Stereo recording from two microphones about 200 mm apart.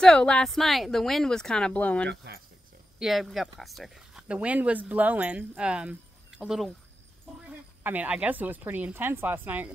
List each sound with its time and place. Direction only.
0.0 s speech: 5° left (ahead or behind)
2.0 s speech: 55° right (ahead or behind)
3.0 s a woman's voice: centre (ahead or behind)